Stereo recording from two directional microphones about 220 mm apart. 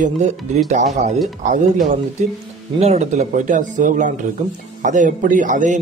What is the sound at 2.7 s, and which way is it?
A man's voice, 30° right (ahead or behind).